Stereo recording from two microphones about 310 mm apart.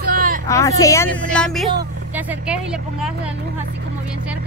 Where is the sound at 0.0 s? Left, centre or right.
Right.